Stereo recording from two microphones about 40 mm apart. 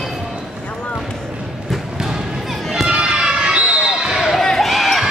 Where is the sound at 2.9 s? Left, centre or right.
Right.